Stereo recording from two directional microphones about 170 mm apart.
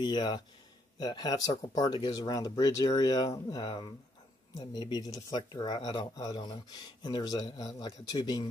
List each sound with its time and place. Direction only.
0.0 s speech: 25° left (ahead or behind)